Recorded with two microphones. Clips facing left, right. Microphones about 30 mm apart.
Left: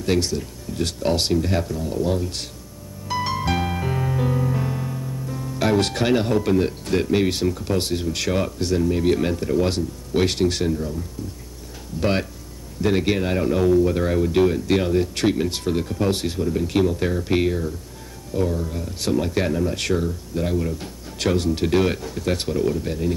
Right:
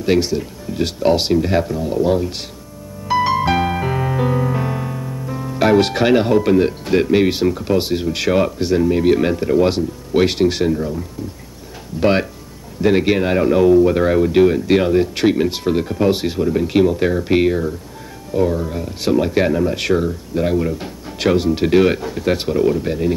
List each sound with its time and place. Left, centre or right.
0.0 s speech: centre
3.1 s music: centre
12.0 s speech: centre